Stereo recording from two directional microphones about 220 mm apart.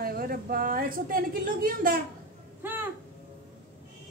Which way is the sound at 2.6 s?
10° right (ahead or behind).